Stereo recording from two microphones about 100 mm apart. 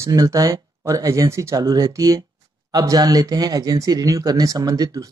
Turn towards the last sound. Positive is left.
turn(degrees=-35)  # may be behind; listen again after turning